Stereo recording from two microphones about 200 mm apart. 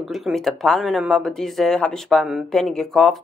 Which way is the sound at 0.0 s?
Centre (ahead or behind).